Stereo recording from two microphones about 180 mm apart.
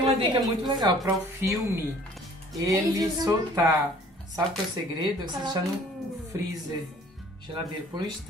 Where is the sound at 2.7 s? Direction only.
20° right (ahead or behind).